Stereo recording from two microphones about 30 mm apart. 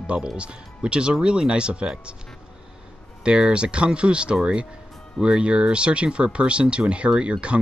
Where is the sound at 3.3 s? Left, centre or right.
Right.